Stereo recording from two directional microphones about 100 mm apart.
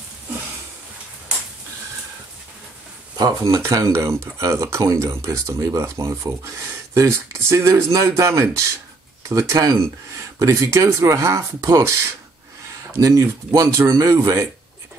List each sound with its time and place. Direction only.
3.2 s speech: 35° right (ahead or behind)